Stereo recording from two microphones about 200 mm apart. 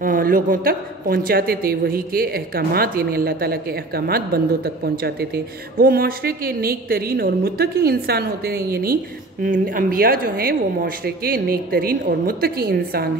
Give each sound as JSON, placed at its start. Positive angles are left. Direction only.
{"t": 0.0, "sound": "a woman's voice", "side_deg": -45}